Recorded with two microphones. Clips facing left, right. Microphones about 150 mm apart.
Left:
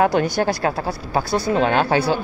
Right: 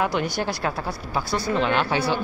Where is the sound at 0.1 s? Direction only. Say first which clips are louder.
Left 6 dB; 45° left (ahead or behind).